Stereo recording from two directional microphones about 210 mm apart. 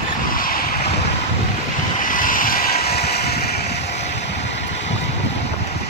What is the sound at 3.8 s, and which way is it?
Vehicle, 30° left (ahead or behind).